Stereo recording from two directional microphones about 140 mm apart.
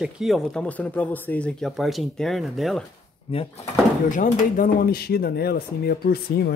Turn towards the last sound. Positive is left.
turn(degrees=90)